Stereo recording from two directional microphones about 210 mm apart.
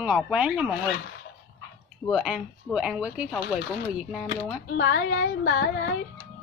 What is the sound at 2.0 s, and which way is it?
Speech, centre (ahead or behind).